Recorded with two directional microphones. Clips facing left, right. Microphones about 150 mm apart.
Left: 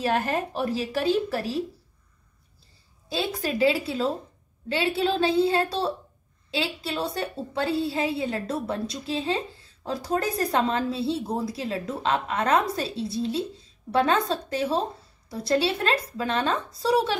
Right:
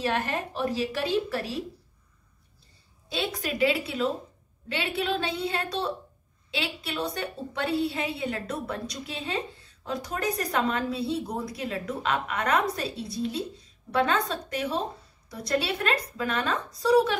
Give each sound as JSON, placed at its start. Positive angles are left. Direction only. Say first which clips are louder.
{"t": 0.0, "sound": "speech", "louder": "left 3 dB", "side_deg": 30}
{"t": 3.1, "sound": "a woman's voice", "louder": "left 3 dB", "side_deg": 35}